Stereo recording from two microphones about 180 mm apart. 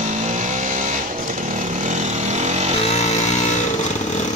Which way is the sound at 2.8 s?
35° left (ahead or behind).